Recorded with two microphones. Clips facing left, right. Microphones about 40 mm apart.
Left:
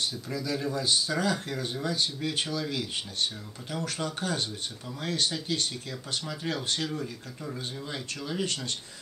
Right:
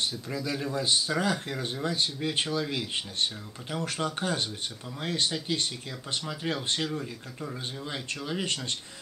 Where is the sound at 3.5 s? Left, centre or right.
Right.